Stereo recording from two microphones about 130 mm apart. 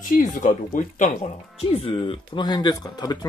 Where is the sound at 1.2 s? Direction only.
50° left (ahead or behind).